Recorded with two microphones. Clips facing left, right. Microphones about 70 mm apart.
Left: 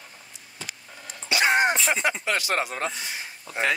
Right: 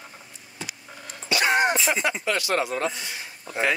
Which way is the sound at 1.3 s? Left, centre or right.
Left.